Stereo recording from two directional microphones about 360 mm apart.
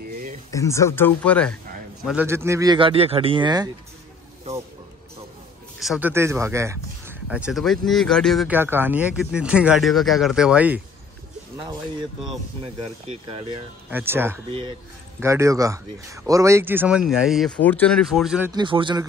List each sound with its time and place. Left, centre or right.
0.1 s a sound: right
0.5 s speech: centre
5.8 s speech: centre
13.0 s speech: centre
13.8 s speech: centre